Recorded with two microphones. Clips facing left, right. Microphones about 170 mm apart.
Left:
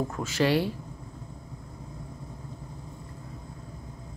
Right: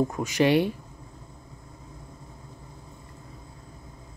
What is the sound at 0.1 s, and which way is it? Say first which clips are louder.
Speech: right 3 dB; 15° right (ahead or behind).